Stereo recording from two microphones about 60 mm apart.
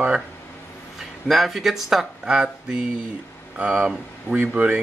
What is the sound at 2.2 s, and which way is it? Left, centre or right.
Speech, centre.